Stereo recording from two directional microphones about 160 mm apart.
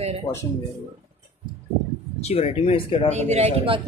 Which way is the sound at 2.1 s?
40° left (ahead or behind).